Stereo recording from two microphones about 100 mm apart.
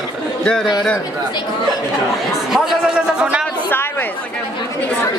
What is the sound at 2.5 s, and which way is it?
A man's voice, 5° right (ahead or behind).